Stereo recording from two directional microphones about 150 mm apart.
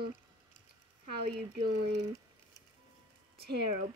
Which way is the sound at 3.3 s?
90° right.